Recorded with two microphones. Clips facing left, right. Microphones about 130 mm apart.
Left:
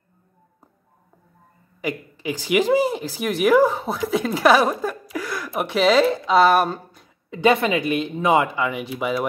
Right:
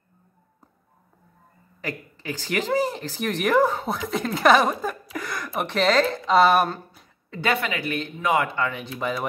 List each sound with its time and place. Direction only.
1.8 s speech: 10° left (ahead or behind)
7.2 s speech: 15° left (ahead or behind)
8.5 s speech: 10° left (ahead or behind)